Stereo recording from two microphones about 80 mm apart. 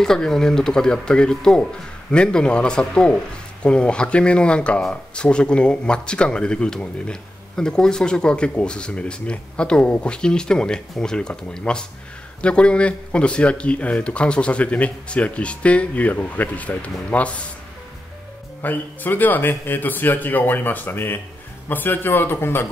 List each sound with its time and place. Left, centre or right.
0.0 s speech: centre
18.6 s a man's voice: left